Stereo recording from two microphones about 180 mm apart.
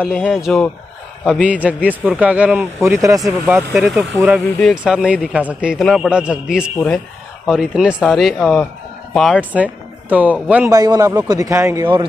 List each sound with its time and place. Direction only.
0.1 s a man's voice: centre (ahead or behind)
3.0 s a man's voice: 20° right (ahead or behind)
3.4 s speech: 5° right (ahead or behind)
9.4 s speech: 10° right (ahead or behind)
10.7 s a man's voice: 20° right (ahead or behind)